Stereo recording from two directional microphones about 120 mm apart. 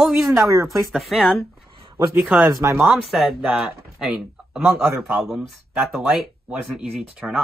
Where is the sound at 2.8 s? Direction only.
5° right (ahead or behind).